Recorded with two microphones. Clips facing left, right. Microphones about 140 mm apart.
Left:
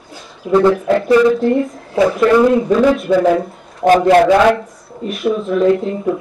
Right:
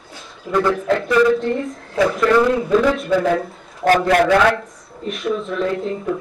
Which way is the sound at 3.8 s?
20° left (ahead or behind).